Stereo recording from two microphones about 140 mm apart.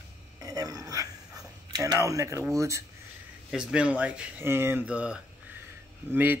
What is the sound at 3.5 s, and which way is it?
Speech, 5° right (ahead or behind).